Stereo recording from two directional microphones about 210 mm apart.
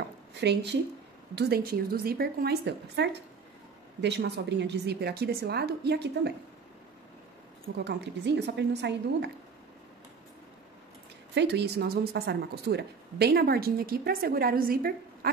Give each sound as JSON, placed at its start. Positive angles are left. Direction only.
{"t": 0.4, "sound": "a woman's voice", "side_deg": -55}
{"t": 7.7, "sound": "a woman's voice", "side_deg": -55}
{"t": 11.3, "sound": "a woman's voice", "side_deg": -50}